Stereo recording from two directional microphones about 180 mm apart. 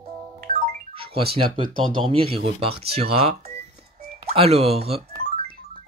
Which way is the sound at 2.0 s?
30° right (ahead or behind).